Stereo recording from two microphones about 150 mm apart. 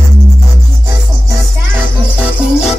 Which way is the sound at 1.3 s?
15° right (ahead or behind).